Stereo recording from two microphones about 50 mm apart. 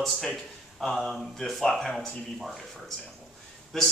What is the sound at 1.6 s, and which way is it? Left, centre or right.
A man's voice, centre.